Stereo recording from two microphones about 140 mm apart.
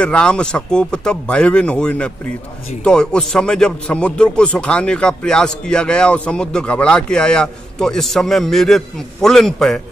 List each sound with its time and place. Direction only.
0.0 s speech: 5° left (ahead or behind)